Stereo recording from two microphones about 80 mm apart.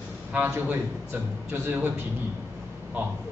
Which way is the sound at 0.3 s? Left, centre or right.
Right.